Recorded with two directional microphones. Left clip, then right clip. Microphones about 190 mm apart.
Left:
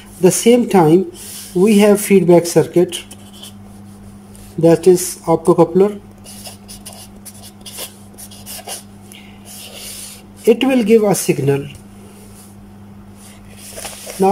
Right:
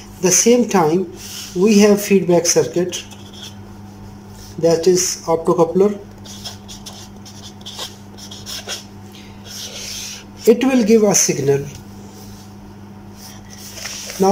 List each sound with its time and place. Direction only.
0.2 s a woman's voice: 20° left (ahead or behind)
4.6 s speech: 15° left (ahead or behind)
5.5 s speech: centre (ahead or behind)
10.4 s speech: 10° left (ahead or behind)